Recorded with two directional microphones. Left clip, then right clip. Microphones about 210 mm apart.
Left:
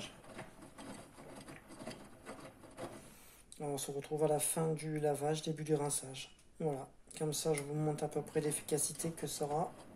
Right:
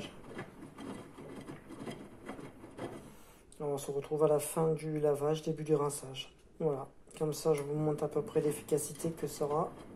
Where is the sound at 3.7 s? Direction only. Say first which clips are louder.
Right 5 dB; 20° left (ahead or behind).